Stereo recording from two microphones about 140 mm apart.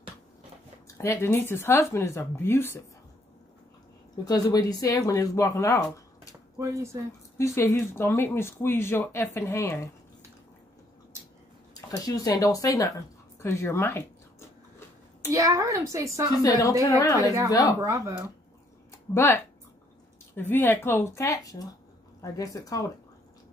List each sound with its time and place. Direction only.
1.0 s speech: 20° left (ahead or behind)
4.2 s speech: 30° left (ahead or behind)
6.6 s a woman's voice: 20° right (ahead or behind)
7.3 s speech: 20° left (ahead or behind)
12.0 s speech: 25° left (ahead or behind)
15.3 s a woman's voice: 25° right (ahead or behind)
16.3 s speech: 25° left (ahead or behind)
17.7 s a woman's voice: 20° right (ahead or behind)
19.1 s speech: 15° left (ahead or behind)